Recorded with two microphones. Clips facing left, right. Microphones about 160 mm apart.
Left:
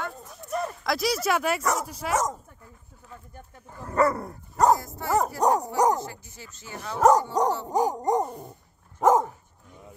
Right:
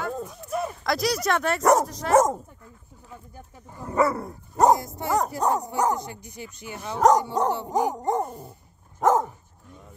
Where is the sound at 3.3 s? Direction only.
10° right (ahead or behind).